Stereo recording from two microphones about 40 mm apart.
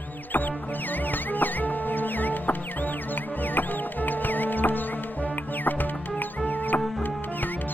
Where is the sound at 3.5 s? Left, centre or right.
Left.